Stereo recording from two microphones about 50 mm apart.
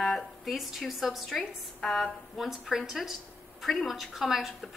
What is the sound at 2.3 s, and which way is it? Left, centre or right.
A woman's voice, centre.